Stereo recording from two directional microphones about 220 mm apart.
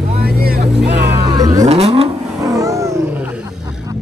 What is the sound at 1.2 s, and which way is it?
Vehicle, 15° right (ahead or behind).